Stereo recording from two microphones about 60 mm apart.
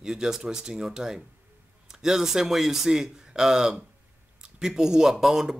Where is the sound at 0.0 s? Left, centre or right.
Centre.